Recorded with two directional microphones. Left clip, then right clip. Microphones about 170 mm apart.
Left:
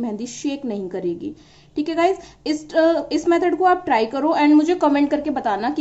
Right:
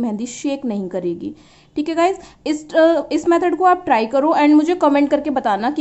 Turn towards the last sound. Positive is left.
turn(degrees=-25)  # may be behind; listen again after turning